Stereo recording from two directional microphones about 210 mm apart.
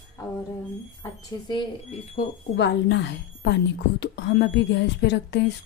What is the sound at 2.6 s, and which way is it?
Speech, 60° left (ahead or behind).